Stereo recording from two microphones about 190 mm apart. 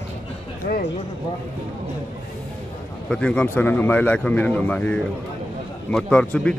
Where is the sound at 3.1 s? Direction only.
5° left (ahead or behind).